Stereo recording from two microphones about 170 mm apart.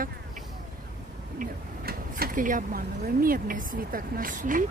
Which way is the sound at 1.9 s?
55° right (ahead or behind).